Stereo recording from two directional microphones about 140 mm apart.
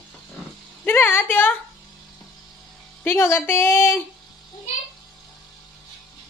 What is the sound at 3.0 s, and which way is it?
Speech, 15° left (ahead or behind).